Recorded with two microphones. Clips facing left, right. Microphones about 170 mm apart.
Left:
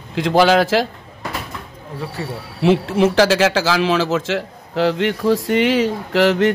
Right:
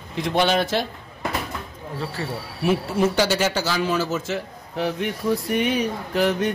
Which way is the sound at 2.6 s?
90° left.